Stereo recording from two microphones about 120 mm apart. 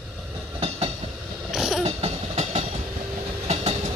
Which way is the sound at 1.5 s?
5° right (ahead or behind).